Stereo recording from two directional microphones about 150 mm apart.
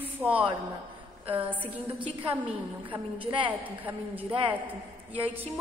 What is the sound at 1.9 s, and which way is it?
A woman's voice, 40° right (ahead or behind).